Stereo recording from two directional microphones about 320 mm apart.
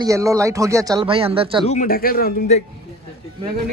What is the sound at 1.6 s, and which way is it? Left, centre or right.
A man's voice, left.